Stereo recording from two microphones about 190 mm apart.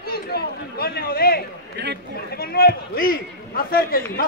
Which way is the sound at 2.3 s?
55° left (ahead or behind).